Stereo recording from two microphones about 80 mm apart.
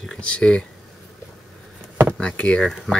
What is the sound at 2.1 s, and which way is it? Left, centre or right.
Speech, centre.